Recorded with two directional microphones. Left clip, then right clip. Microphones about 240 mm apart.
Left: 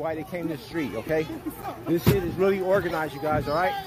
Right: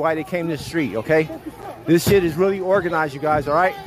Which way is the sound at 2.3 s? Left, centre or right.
Centre.